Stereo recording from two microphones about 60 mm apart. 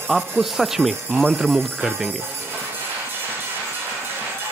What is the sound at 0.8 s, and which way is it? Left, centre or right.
Speech, left.